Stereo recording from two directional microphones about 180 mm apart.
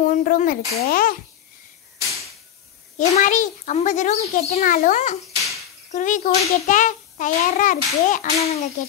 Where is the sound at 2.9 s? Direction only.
40° left (ahead or behind).